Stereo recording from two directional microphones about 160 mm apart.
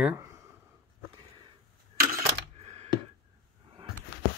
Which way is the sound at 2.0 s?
90° right.